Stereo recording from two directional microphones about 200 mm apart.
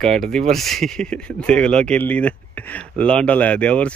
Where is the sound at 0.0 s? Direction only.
Centre (ahead or behind).